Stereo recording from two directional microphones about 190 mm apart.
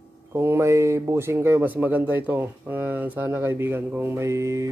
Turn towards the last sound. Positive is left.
turn(degrees=-15)  # may be behind; listen again after turning